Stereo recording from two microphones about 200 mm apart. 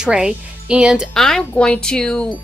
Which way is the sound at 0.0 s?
5° right (ahead or behind).